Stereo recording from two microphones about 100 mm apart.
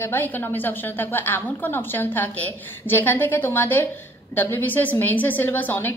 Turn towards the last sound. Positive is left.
turn(degrees=20)  # may be behind; listen again after turning